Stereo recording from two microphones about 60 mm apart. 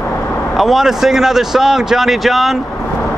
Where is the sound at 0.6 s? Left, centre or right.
Centre.